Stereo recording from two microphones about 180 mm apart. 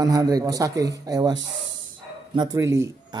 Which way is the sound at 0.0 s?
20° right (ahead or behind).